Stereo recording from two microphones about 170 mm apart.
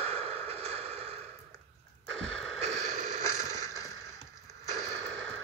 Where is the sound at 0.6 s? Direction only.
40° right (ahead or behind).